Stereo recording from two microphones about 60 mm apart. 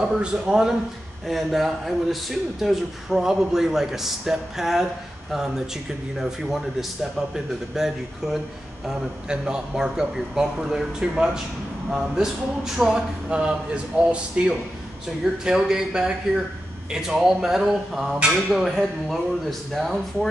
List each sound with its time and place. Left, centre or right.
0.2 s speech: centre
13.3 s speech: centre
19.7 s speech: centre